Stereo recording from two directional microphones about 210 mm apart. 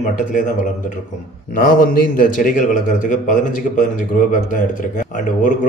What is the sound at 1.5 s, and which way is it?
A man's voice, 40° left (ahead or behind).